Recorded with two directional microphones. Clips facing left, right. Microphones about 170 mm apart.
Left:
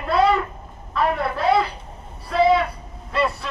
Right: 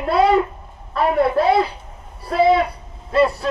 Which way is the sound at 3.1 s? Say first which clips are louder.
Right 7 dB; 30° right (ahead or behind).